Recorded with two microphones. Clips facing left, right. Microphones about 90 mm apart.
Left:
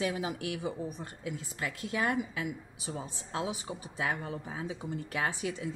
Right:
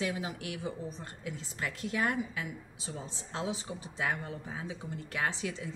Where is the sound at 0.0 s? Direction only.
15° left (ahead or behind).